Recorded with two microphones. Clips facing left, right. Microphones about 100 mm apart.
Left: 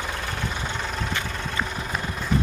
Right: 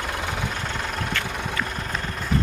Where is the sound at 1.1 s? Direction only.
15° left (ahead or behind).